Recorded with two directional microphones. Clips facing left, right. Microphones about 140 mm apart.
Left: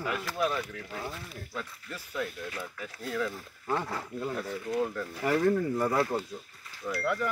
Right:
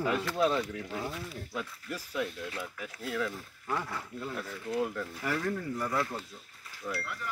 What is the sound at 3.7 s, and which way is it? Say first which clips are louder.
Speech: left 3 dB; 25° left (ahead or behind).